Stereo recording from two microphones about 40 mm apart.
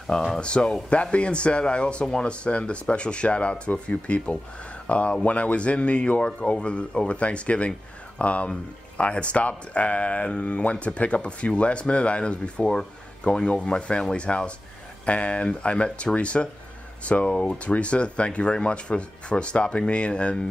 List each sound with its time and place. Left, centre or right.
0.0 s speech: centre
0.4 s speech: left